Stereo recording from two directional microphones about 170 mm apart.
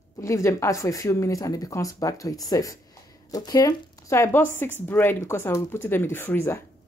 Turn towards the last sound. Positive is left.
turn(degrees=15)  # may be behind; listen again after turning